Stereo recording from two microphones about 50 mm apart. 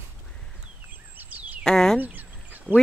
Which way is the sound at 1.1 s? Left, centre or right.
Right.